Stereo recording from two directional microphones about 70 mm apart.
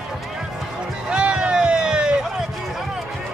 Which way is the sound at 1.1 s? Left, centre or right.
Centre.